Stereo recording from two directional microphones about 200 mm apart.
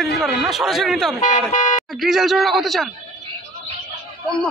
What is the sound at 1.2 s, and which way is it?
Speech, 40° left (ahead or behind).